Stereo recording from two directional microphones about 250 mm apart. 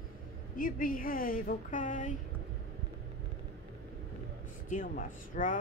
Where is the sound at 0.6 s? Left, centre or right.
Left.